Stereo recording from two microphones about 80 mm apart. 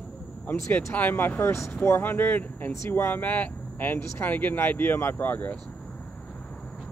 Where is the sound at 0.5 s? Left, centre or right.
Left.